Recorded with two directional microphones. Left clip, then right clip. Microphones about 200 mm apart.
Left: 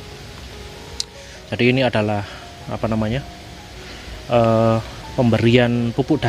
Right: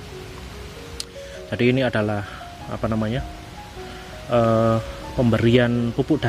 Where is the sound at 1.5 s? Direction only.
10° left (ahead or behind).